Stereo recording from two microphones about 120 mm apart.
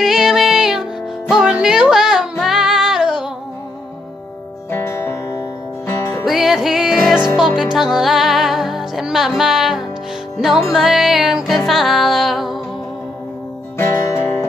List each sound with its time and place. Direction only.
0.0 s music: 5° right (ahead or behind)
4.6 s music: 20° left (ahead or behind)
6.2 s music: centre (ahead or behind)
13.7 s music: 20° left (ahead or behind)